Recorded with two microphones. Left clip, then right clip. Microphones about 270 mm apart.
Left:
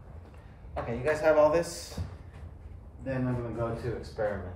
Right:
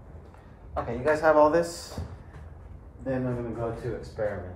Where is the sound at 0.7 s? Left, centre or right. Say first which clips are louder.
Right 4 dB; centre.